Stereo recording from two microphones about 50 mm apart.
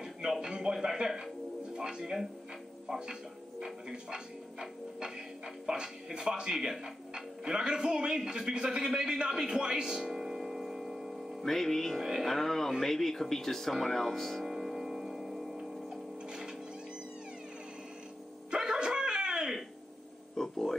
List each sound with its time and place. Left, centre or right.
0.0 s speech: centre
11.4 s speech: centre
12.0 s speech: centre
12.3 s speech: centre
14.4 s tick-tock: centre
18.5 s a sound: centre
20.3 s a sound: centre